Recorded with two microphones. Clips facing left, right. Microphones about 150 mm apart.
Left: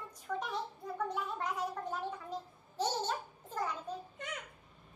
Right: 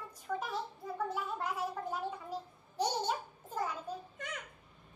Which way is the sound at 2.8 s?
10° right (ahead or behind).